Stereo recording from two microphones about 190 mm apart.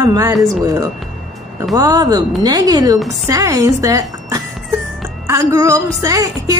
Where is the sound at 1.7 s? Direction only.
20° right (ahead or behind).